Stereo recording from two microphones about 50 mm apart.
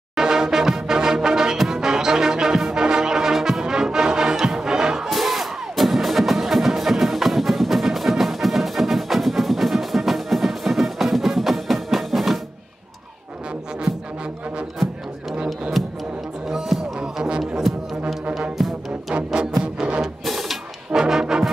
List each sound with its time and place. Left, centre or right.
0.1 s music: centre
5.1 s music: centre
15.3 s music: right
16.4 s music: centre
19.6 s music: right
20.0 s music: centre
21.0 s brass instrument: centre